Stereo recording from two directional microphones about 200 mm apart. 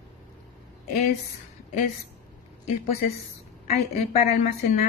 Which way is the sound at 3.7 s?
30° left (ahead or behind).